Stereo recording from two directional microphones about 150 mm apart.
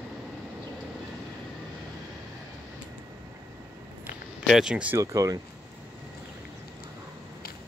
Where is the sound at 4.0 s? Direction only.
5° right (ahead or behind).